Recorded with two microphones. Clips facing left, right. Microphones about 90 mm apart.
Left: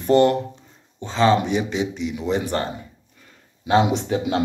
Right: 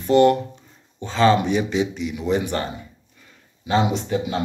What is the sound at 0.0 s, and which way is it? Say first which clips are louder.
Speech: right 1 dB; 35° left (ahead or behind).